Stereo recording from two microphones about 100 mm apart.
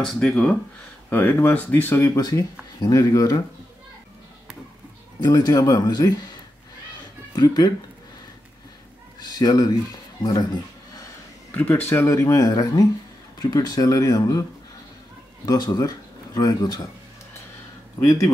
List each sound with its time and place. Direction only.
0.0 s speech: 5° left (ahead or behind)
1.1 s speech: 20° left (ahead or behind)
2.1 s speech: 40° left (ahead or behind)
5.2 s speech: 40° left (ahead or behind)
7.3 s speech: 40° left (ahead or behind)
9.2 s speech: 40° left (ahead or behind)
11.5 s speech: 15° left (ahead or behind); by 14.4 s 40° left (ahead or behind)
15.4 s speech: 40° left (ahead or behind)
18.0 s speech: 35° left (ahead or behind)